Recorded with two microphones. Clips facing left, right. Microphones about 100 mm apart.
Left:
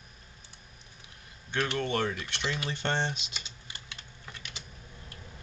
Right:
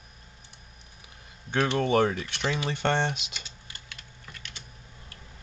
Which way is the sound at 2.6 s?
60° right (ahead or behind).